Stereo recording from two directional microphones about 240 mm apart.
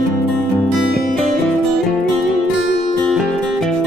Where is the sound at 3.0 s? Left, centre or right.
Centre.